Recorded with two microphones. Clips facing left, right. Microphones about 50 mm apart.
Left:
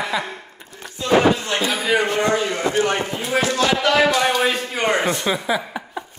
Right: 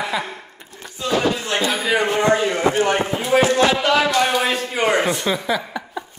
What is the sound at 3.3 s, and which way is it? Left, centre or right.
Speech, centre.